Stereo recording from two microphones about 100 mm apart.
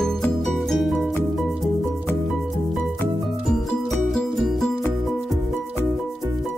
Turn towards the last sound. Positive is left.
turn(degrees=5)  # may be behind; listen again after turning